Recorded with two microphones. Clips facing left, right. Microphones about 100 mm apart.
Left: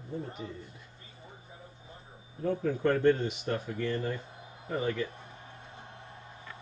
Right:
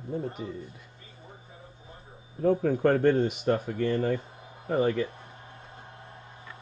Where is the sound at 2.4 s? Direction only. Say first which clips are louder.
Right 6 dB; 50° right (ahead or behind).